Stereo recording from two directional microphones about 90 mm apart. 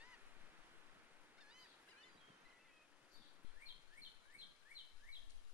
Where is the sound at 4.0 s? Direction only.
20° right (ahead or behind).